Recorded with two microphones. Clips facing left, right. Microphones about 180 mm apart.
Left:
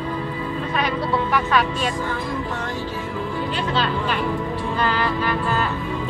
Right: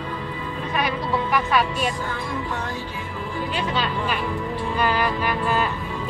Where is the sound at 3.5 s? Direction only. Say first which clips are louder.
Left 1 dB; 10° right (ahead or behind).